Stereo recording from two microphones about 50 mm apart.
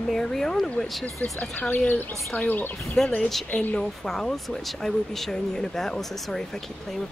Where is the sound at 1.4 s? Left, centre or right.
Left.